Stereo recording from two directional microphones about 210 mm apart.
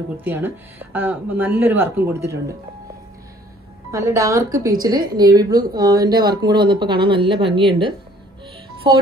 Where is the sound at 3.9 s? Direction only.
15° right (ahead or behind).